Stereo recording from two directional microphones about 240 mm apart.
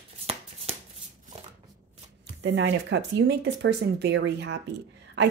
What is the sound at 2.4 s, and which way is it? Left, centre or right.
Speech, right.